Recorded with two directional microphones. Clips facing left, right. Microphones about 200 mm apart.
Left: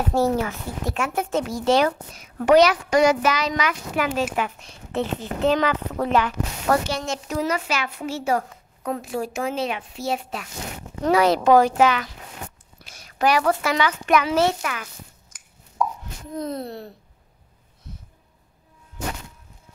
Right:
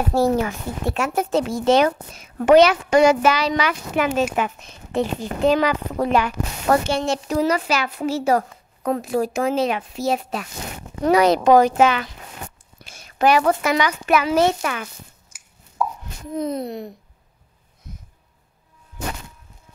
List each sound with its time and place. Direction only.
0.0 s speech: 10° right (ahead or behind)
0.8 s a woman's voice: 40° right (ahead or behind)
1.4 s a woman's voice: 25° right (ahead or behind)
6.6 s a woman's voice: 25° right (ahead or behind)
11.0 s a woman's voice: 15° right (ahead or behind)
14.0 s a child's voice: 5° right (ahead or behind)
14.6 s a woman's voice: 30° right (ahead or behind)
15.2 s plop: 10° right (ahead or behind)
16.3 s a woman's voice: 20° right (ahead or behind)